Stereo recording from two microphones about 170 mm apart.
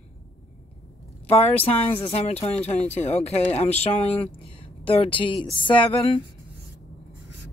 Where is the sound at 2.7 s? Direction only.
40° left (ahead or behind).